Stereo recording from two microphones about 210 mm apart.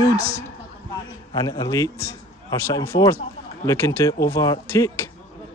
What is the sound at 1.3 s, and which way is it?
Speech, 20° left (ahead or behind).